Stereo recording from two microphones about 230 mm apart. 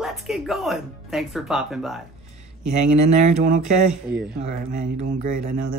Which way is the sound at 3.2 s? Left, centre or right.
Right.